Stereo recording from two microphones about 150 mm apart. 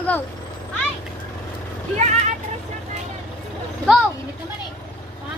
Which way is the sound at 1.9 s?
50° right (ahead or behind).